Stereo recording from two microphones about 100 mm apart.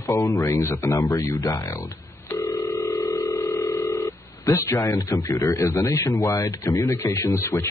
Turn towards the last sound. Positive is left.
turn(degrees=30)  # may be behind; listen again after turning